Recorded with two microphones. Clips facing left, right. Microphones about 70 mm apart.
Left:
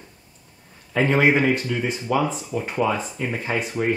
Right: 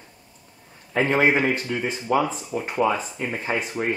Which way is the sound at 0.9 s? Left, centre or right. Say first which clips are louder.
Left 1 dB; centre.